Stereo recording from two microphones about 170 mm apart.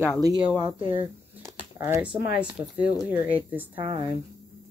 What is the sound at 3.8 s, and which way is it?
Speech, 30° right (ahead or behind).